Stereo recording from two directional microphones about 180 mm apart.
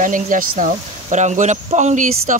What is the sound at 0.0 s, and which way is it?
Speech, 45° right (ahead or behind).